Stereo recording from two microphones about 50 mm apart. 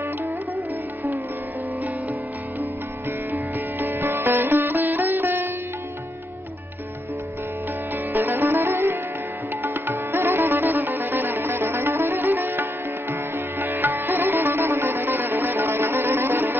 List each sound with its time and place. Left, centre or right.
3.8 s sitar: right
8.1 s music: right
13.1 s sitar: right